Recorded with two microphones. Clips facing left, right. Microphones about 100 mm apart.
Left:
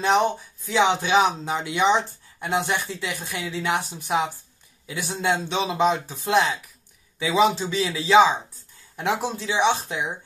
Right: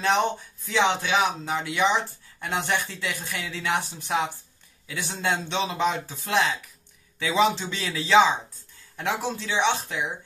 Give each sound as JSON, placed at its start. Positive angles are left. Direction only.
{"t": 0.0, "sound": "a man's voice", "side_deg": 15}
{"t": 1.0, "sound": "a man's voice", "side_deg": 25}